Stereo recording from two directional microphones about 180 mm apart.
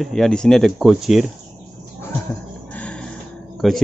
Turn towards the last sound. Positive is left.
turn(degrees=0)  # may be behind; listen again after turning